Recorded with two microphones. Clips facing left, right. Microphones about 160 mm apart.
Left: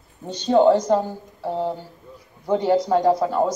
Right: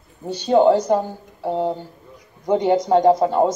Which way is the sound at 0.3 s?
10° right (ahead or behind).